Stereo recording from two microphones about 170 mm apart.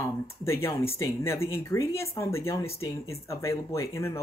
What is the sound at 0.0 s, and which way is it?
Speech, 15° left (ahead or behind).